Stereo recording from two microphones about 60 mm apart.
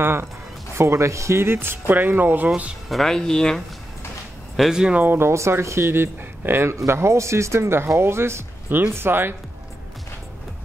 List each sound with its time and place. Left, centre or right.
0.0 s speech: right
0.7 s speech: right
2.9 s speech: centre
4.6 s speech: centre
4.9 s speech: right
5.3 s speech: right